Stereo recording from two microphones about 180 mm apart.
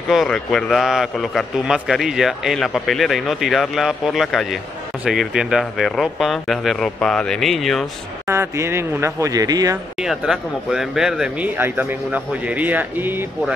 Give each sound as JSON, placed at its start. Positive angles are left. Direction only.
{"t": 0.1, "sound": "a man's voice", "side_deg": 0}
{"t": 8.3, "sound": "speech", "side_deg": -15}
{"t": 9.9, "sound": "speech", "side_deg": -5}